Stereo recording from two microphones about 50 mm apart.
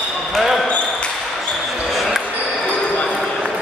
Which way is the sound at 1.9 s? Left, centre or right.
Centre.